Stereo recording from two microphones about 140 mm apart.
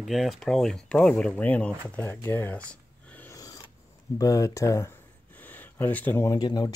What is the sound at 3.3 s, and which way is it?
Filing, 25° left (ahead or behind).